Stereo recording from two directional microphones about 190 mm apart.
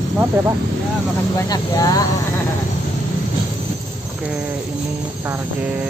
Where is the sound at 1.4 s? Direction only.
20° left (ahead or behind).